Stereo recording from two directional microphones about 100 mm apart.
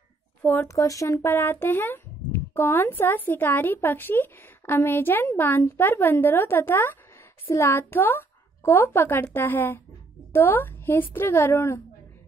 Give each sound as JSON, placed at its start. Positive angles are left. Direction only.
{"t": 0.4, "sound": "speech", "side_deg": 20}
{"t": 0.7, "sound": "speech", "side_deg": 35}